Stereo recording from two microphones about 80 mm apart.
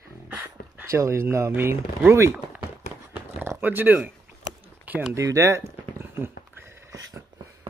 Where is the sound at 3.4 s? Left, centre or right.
Right.